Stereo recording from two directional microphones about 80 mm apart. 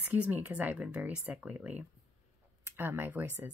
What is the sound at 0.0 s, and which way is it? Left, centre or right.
Speech, right.